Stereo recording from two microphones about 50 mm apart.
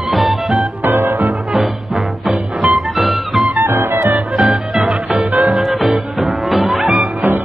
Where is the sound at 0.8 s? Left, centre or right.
Right.